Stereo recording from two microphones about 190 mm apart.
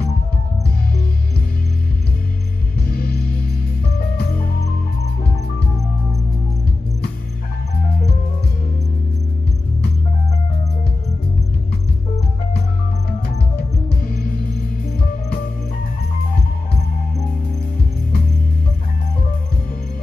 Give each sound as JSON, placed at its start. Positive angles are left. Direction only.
{"t": 2.8, "sound": "music", "side_deg": 55}
{"t": 13.8, "sound": "music", "side_deg": 55}